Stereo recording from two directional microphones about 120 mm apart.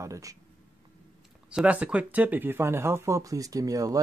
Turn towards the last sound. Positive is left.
turn(degrees=-30)  # may be behind; listen again after turning